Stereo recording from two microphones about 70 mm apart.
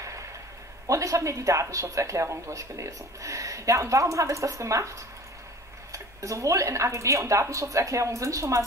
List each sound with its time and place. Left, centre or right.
0.8 s speech: right